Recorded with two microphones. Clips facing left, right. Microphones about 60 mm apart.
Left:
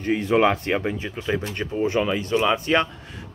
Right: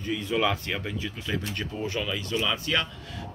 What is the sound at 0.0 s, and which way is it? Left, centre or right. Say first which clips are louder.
Speech: left 7 dB; left.